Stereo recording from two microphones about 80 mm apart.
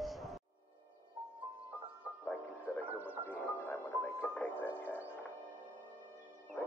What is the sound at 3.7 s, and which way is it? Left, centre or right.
Music, left.